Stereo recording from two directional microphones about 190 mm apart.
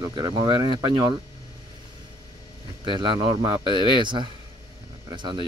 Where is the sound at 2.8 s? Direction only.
25° right (ahead or behind).